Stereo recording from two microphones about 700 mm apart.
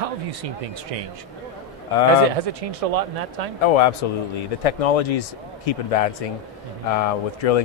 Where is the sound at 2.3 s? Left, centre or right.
Right.